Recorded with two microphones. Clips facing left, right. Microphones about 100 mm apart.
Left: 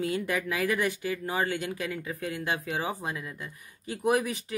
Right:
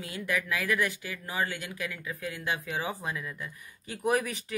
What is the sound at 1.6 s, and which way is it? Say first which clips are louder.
Speech: left 4 dB; 30° left (ahead or behind).